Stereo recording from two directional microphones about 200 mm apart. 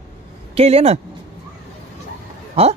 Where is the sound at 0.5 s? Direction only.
30° right (ahead or behind).